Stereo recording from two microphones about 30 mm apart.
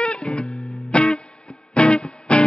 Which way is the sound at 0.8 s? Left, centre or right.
Left.